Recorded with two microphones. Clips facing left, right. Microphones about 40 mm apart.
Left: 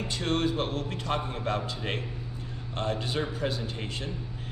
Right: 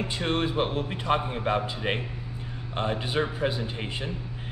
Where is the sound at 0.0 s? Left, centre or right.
Centre.